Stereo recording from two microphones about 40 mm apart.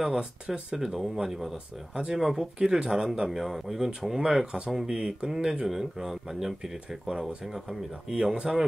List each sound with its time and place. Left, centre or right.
0.0 s speech: centre
3.3 s speech: centre
4.2 s speech: centre
5.7 s speech: centre